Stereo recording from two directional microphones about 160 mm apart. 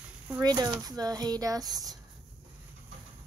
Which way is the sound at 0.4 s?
25° right (ahead or behind).